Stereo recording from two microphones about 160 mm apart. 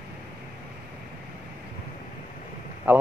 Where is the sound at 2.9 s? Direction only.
10° right (ahead or behind).